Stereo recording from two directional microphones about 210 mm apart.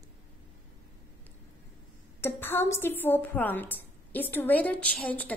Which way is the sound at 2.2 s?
10° left (ahead or behind).